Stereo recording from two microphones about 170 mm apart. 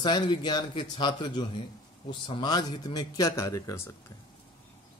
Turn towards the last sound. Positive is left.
turn(degrees=20)  # may be behind; listen again after turning